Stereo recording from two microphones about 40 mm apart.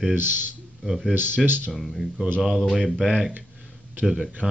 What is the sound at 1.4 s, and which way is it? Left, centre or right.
Speech, right.